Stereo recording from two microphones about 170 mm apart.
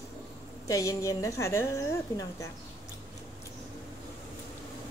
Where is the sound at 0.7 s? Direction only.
20° left (ahead or behind).